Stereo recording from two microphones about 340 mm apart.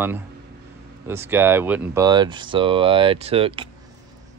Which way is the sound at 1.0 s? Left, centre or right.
Centre.